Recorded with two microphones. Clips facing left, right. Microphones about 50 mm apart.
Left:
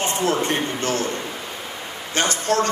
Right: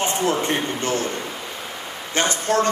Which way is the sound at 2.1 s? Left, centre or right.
Right.